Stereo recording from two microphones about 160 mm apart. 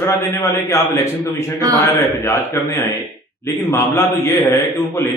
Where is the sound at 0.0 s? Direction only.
15° left (ahead or behind).